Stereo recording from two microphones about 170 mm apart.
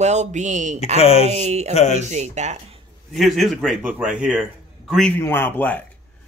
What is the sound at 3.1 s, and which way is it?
A man's voice, centre (ahead or behind).